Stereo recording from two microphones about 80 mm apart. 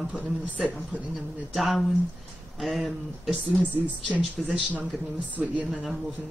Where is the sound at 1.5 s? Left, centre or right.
Centre.